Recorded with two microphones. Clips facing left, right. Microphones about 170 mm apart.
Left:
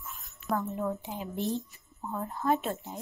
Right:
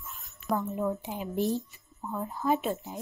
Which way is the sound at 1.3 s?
40° right (ahead or behind).